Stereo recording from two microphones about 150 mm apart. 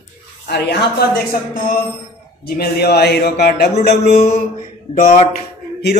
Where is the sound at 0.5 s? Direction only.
90° left.